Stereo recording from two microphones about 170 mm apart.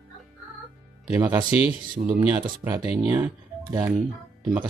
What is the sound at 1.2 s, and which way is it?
Speech, 25° right (ahead or behind).